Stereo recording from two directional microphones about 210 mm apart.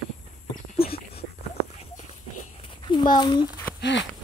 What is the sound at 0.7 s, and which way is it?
Dog, 25° left (ahead or behind).